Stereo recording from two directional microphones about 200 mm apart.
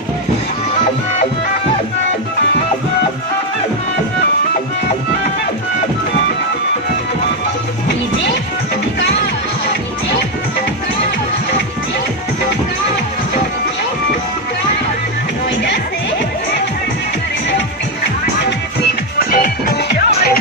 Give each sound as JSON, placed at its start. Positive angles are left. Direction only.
{"t": 19.1, "sound": "music", "side_deg": 45}